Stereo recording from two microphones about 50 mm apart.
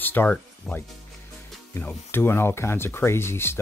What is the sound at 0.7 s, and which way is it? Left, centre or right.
Speech, centre.